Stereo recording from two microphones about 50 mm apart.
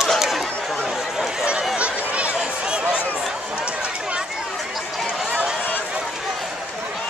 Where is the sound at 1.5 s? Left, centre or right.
Right.